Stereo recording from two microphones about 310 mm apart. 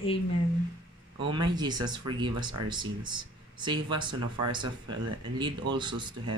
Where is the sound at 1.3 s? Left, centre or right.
Centre.